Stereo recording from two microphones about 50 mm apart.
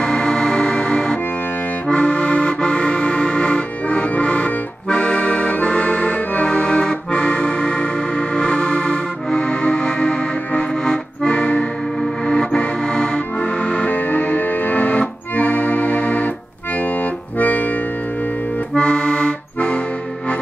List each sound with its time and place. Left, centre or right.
0.0 s music: centre
1.9 s accordion: left
12.0 s music: centre
13.4 s accordion: left
13.9 s music: left
17.0 s accordion: left
18.8 s accordion: centre